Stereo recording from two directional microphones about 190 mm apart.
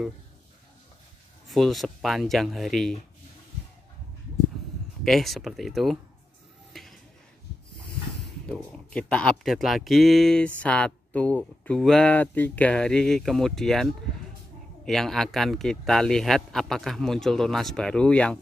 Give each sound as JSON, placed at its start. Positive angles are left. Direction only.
{"t": 1.5, "sound": "speech", "side_deg": 0}
{"t": 5.0, "sound": "speech", "side_deg": 0}
{"t": 6.7, "sound": "a sound", "side_deg": 0}
{"t": 8.5, "sound": "speech", "side_deg": 5}